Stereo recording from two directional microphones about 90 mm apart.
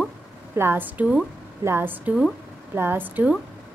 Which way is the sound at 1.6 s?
30° right (ahead or behind).